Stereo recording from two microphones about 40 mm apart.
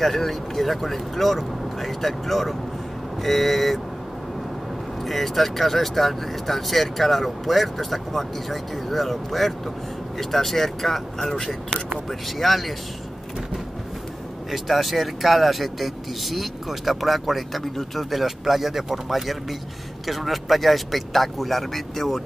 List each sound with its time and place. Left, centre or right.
0.0 s speech: centre
5.0 s speech: centre
14.5 s speech: centre